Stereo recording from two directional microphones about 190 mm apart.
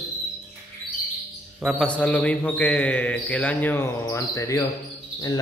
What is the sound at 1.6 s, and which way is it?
A man's voice, 5° left (ahead or behind).